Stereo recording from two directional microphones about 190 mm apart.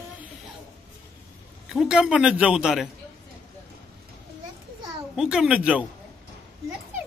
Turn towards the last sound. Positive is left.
turn(degrees=-5)  # may be behind; listen again after turning